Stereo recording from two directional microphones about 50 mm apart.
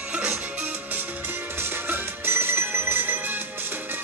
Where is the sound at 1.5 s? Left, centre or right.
Right.